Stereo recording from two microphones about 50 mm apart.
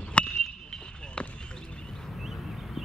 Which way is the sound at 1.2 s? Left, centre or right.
Left.